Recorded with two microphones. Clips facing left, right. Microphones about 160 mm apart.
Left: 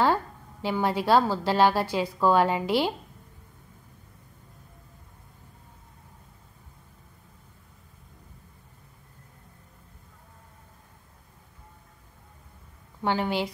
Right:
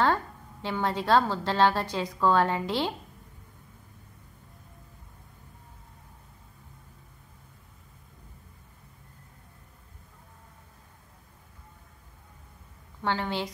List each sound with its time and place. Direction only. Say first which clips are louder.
0.0 s a woman's voice: left 2 dB; 10° left (ahead or behind)
13.0 s a woman's voice: left 3 dB; 10° left (ahead or behind)